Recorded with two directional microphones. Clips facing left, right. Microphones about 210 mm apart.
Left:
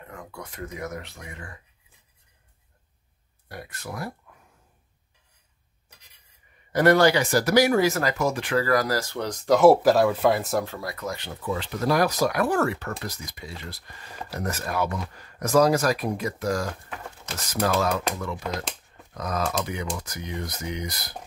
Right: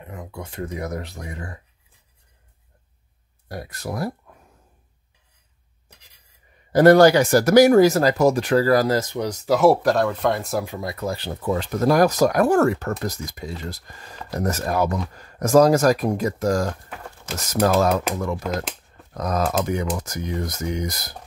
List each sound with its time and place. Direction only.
0.0 s speech: 20° right (ahead or behind); by 1.5 s 35° right (ahead or behind)
3.4 s speech: 40° right (ahead or behind)
6.7 s speech: 40° right (ahead or behind); by 10.6 s centre (ahead or behind)
10.6 s speech: 20° right (ahead or behind); by 18.0 s 40° right (ahead or behind)
19.1 s speech: 45° right (ahead or behind)